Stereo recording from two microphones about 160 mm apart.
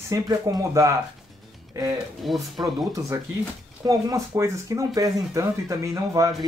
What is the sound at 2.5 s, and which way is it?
Speech, 20° right (ahead or behind).